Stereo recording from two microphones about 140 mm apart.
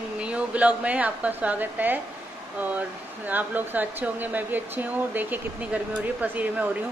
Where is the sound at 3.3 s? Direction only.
10° right (ahead or behind).